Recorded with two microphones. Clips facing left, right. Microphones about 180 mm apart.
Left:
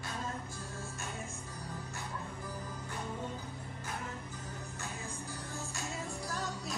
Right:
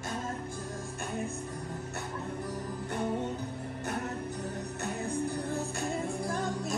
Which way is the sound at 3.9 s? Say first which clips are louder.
Right 8 dB; 70° right (ahead or behind).